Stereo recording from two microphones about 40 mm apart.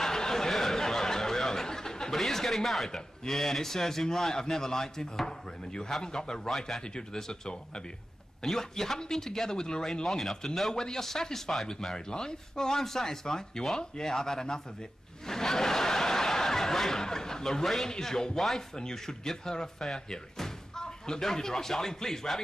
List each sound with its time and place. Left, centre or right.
0.0 s a sound: centre
2.9 s speech: centre
10.0 s speech: centre
15.2 s snicker: centre
17.9 s speech: centre